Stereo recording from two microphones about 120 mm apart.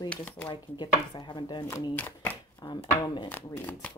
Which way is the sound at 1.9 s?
15° left (ahead or behind).